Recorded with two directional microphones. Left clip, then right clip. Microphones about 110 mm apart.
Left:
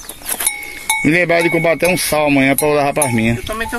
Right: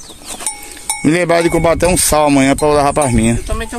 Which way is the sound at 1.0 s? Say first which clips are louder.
Right 2 dB; 30° right (ahead or behind).